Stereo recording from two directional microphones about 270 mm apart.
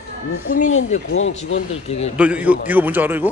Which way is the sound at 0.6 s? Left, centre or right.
Left.